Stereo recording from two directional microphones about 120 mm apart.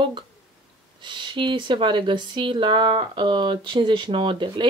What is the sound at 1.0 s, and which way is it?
Speech, 40° right (ahead or behind).